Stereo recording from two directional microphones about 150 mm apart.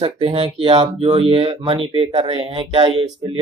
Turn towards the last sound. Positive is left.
turn(degrees=-35)  # may be behind; listen again after turning